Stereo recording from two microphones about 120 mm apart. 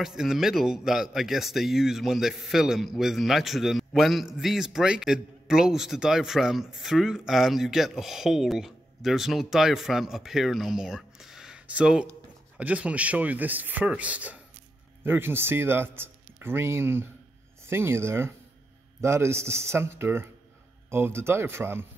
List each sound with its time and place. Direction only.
0.0 s speech: 5° right (ahead or behind); by 21.8 s 20° right (ahead or behind)